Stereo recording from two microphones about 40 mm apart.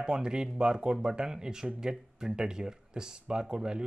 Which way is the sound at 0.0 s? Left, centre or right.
Centre.